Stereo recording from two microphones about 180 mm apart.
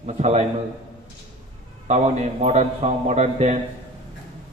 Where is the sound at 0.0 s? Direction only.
40° right (ahead or behind).